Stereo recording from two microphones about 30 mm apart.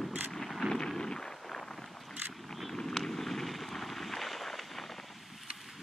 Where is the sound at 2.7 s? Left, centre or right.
Centre.